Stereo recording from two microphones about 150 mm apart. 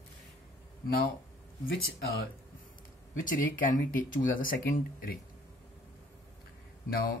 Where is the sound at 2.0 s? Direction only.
90° left.